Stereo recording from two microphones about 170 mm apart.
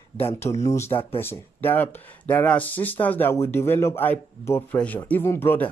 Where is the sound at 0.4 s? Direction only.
20° left (ahead or behind).